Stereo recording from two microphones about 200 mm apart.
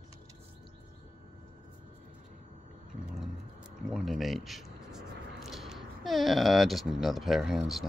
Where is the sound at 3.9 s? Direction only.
Centre (ahead or behind).